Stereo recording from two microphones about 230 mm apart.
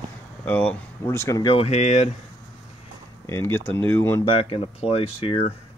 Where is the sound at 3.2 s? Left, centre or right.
Centre.